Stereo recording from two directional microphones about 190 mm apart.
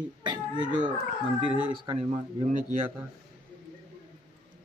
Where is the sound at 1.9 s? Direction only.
25° right (ahead or behind).